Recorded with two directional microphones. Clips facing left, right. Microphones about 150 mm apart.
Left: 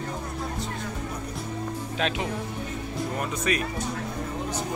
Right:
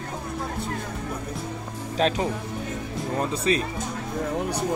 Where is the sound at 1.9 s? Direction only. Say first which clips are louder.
Right 6 dB; 35° right (ahead or behind).